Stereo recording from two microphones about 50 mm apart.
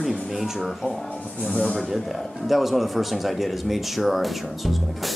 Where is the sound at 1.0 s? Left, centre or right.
Left.